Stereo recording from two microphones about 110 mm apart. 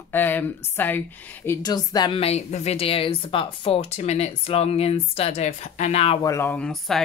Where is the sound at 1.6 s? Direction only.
35° left (ahead or behind).